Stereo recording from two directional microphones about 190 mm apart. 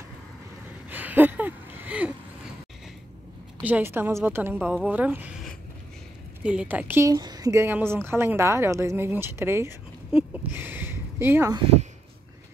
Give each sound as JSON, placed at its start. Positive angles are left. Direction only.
{"t": 0.8, "sound": "a sound", "side_deg": -10}
{"t": 3.6, "sound": "speech", "side_deg": -10}
{"t": 6.4, "sound": "speech", "side_deg": -5}